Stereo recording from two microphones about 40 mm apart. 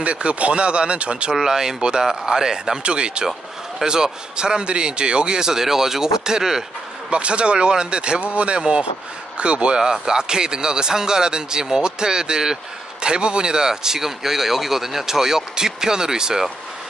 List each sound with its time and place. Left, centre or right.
0.0 s speech: right
1.3 s speech: centre
7.1 s speech: right